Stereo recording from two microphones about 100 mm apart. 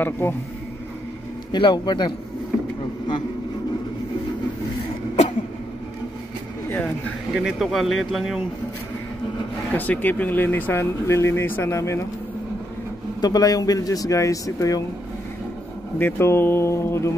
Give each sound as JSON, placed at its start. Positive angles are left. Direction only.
{"t": 0.0, "sound": "speech", "side_deg": 20}
{"t": 1.5, "sound": "a man's voice", "side_deg": 50}
{"t": 7.3, "sound": "speech", "side_deg": -5}
{"t": 9.7, "sound": "speech", "side_deg": 15}
{"t": 13.2, "sound": "speech", "side_deg": 40}
{"t": 16.0, "sound": "speech", "side_deg": 25}